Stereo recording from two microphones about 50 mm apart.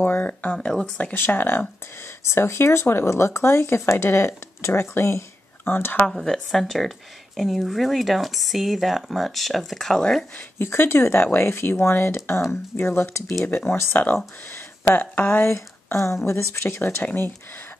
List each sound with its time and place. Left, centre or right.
0.0 s speech: left
0.6 s speech: centre
1.1 s speech: left
2.2 s speech: left
5.7 s speech: left
6.0 s speech: centre
10.6 s speech: left
14.5 s speech: left
15.4 s speech: left
16.6 s speech: left